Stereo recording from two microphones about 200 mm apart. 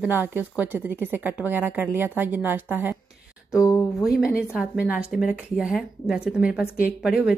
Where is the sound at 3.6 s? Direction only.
15° left (ahead or behind).